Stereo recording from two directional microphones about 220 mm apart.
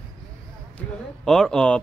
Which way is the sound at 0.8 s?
Centre (ahead or behind).